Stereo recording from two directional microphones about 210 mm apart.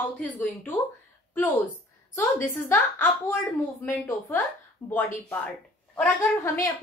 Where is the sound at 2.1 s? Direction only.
10° left (ahead or behind).